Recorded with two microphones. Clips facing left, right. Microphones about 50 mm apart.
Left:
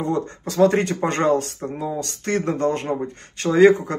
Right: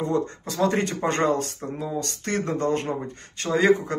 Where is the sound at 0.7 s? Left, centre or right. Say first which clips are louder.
Left 3 dB; left.